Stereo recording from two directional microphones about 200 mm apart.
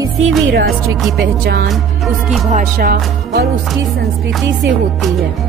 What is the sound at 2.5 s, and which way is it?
Music, 45° right (ahead or behind).